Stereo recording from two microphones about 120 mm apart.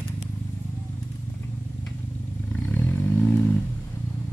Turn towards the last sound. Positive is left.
turn(degrees=15)  # may be behind; listen again after turning